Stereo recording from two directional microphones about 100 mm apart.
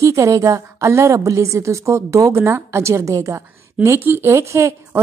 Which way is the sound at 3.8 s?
20° right (ahead or behind).